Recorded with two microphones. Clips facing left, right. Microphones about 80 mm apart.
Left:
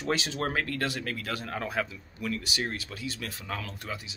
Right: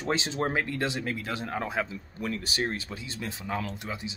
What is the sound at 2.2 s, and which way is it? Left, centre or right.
Speech, right.